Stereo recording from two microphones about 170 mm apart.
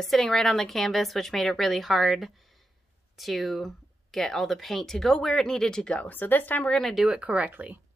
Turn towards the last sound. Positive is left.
turn(degrees=-10)  # may be behind; listen again after turning